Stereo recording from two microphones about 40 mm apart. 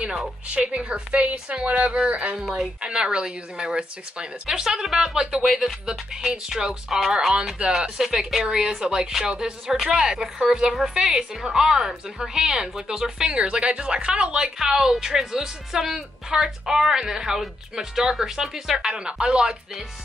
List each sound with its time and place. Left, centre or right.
0.0 s a woman's voice: centre
2.3 s a woman's voice: centre
4.5 s a woman's voice: centre
7.6 s a woman's voice: right
8.0 s a woman's voice: centre